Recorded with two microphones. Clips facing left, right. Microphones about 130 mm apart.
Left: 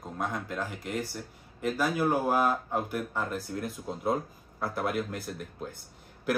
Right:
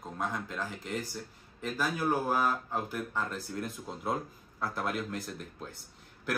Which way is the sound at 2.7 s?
10° left (ahead or behind).